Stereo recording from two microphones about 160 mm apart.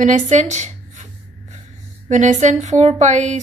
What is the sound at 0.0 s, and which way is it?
Speech, 50° right (ahead or behind).